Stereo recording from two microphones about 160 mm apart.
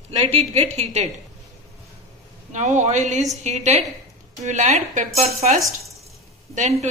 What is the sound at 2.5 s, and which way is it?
Speech, 50° right (ahead or behind).